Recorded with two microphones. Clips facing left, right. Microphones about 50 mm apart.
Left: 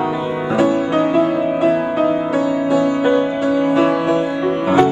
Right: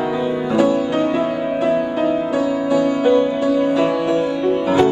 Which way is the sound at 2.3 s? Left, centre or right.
Left.